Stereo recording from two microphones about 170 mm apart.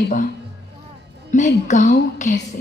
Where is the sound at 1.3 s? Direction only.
45° left (ahead or behind).